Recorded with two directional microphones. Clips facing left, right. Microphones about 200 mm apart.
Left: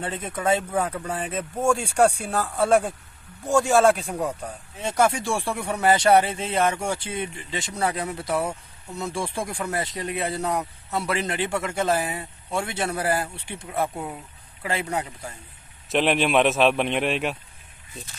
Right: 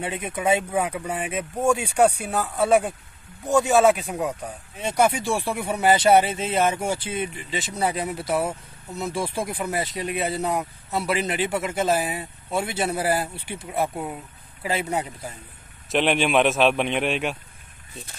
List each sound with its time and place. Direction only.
0.0 s speech: 10° right (ahead or behind)
5.7 s speech: 15° right (ahead or behind)
6.2 s speech: 5° right (ahead or behind)
7.8 s speech: 15° right (ahead or behind)
8.1 s speech: 5° right (ahead or behind)
14.9 s speech: 20° right (ahead or behind)
15.9 s speech: centre (ahead or behind)